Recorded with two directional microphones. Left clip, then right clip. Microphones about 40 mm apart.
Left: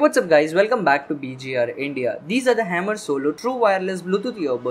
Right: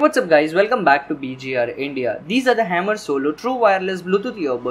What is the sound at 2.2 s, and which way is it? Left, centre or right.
Speech, left.